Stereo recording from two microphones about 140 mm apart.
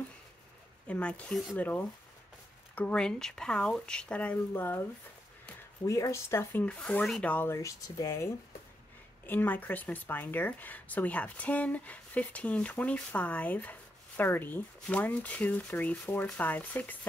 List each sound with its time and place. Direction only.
0.8 s speech: 10° left (ahead or behind)
2.7 s speech: 10° left (ahead or behind)
5.9 s speech: 20° left (ahead or behind)
9.2 s speech: 15° left (ahead or behind)